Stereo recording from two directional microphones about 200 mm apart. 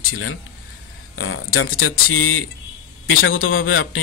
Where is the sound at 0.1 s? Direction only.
90° left.